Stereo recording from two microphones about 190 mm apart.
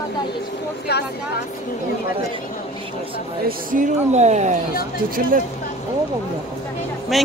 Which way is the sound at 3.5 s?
45° right (ahead or behind).